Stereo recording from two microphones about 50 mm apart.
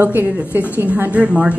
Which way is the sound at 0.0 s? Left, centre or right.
Right.